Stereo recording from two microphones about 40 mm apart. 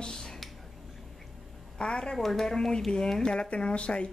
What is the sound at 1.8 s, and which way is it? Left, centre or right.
Speech, left.